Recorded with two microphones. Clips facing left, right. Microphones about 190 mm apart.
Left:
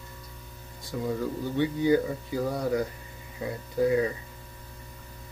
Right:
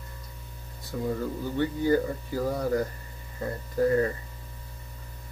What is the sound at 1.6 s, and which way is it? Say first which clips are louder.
Speech: left 1 dB; 10° left (ahead or behind).